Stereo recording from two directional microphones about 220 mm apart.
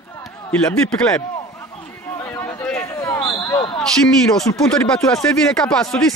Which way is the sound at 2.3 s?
10° left (ahead or behind).